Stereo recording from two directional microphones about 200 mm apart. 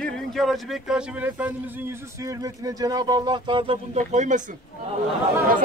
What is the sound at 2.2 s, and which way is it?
Speech, 20° right (ahead or behind).